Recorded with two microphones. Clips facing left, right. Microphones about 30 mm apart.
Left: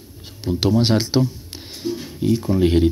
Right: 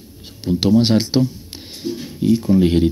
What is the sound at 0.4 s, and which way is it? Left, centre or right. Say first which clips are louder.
Speech: right 3 dB; right.